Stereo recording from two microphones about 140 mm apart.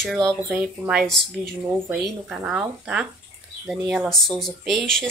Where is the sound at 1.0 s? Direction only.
5° left (ahead or behind).